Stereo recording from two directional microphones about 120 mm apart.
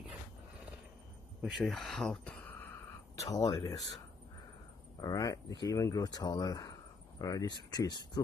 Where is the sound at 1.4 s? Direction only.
Centre (ahead or behind).